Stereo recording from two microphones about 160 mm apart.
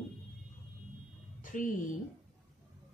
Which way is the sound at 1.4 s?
55° left (ahead or behind).